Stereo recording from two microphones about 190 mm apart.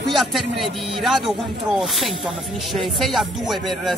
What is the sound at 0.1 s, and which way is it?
Speech, centre (ahead or behind).